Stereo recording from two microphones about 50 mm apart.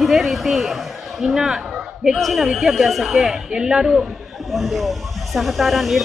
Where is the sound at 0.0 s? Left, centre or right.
Centre.